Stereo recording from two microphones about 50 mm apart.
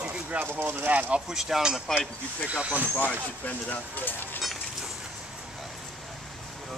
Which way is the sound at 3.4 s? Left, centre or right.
Left.